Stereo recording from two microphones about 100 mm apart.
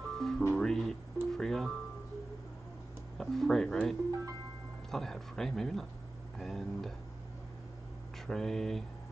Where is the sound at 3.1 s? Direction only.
5° left (ahead or behind).